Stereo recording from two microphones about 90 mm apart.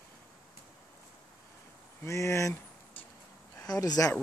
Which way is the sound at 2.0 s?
35° left (ahead or behind).